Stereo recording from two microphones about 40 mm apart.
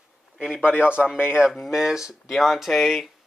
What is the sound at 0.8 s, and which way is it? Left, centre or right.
Speech, right.